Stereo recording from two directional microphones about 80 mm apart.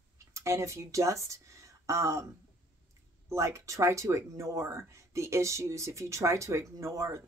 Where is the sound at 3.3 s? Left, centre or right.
Right.